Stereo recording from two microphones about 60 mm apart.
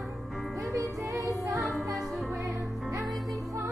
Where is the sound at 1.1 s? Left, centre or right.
Centre.